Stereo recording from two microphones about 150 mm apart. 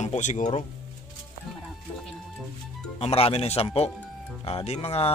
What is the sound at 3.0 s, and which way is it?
Speech, 40° left (ahead or behind).